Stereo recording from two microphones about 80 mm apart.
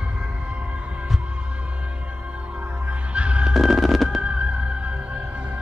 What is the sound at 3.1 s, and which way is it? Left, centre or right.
Music, centre.